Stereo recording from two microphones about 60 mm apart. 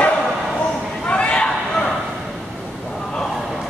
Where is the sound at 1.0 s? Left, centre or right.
Centre.